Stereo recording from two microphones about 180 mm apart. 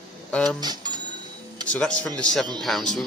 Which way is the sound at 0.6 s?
25° right (ahead or behind).